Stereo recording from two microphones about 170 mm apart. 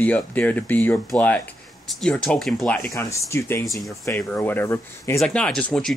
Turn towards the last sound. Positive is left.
turn(degrees=5)  # may be behind; listen again after turning